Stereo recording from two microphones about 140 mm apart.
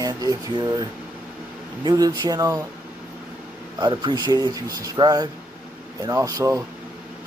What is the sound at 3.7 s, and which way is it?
Speech, 30° right (ahead or behind).